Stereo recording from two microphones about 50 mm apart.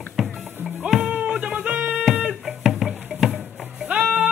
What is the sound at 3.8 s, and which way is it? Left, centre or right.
Music, right.